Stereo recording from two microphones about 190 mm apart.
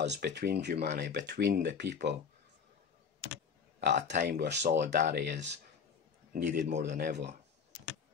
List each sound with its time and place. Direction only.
0.0 s speech: 65° right (ahead or behind)
3.9 s speech: 40° right (ahead or behind)
4.3 s speech: 60° right (ahead or behind)
6.3 s speech: 50° right (ahead or behind)